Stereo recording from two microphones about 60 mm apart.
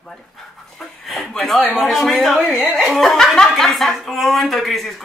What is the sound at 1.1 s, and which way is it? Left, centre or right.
Speech, centre.